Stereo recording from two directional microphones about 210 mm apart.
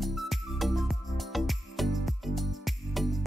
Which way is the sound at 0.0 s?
Centre (ahead or behind).